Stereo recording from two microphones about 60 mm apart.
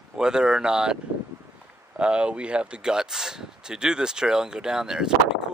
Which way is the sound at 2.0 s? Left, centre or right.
Centre.